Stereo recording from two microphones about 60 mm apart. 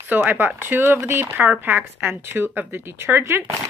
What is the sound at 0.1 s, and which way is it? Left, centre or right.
Speech, right.